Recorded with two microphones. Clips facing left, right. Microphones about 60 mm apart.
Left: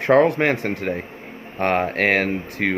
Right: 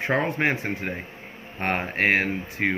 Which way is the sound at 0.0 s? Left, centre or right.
Left.